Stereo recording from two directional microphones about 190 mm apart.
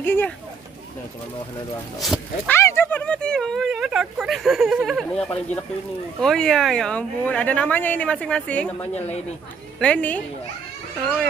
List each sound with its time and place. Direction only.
0.0 s speech: 10° left (ahead or behind)
2.0 s speech: centre (ahead or behind)
2.5 s speech: 10° left (ahead or behind)
8.9 s speech: 35° left (ahead or behind)
9.8 s a woman's voice: 5° left (ahead or behind)